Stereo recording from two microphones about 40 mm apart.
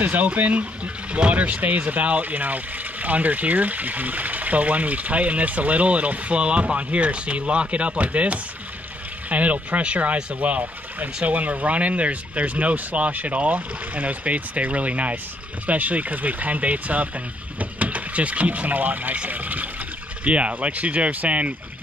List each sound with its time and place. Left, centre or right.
0.0 s speech: right